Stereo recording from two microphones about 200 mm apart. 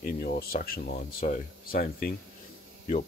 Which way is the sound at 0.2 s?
50° left (ahead or behind).